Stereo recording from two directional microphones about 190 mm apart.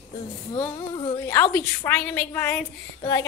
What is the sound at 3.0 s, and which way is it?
Speech, 20° left (ahead or behind).